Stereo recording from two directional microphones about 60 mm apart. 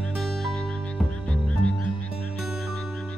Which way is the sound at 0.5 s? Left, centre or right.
Centre.